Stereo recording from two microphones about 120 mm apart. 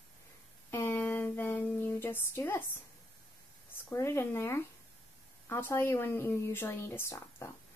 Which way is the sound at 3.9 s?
20° left (ahead or behind).